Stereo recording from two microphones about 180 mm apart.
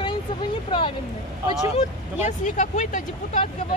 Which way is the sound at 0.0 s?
25° left (ahead or behind).